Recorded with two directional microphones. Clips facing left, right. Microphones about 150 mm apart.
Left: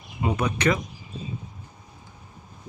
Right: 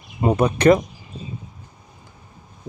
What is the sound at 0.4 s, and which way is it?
Speech, 35° right (ahead or behind).